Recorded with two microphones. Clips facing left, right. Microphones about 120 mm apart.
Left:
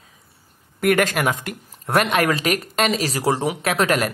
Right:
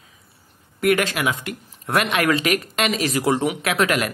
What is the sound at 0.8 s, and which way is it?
Speech, 45° left (ahead or behind).